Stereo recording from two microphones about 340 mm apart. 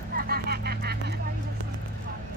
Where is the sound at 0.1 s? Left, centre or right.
Right.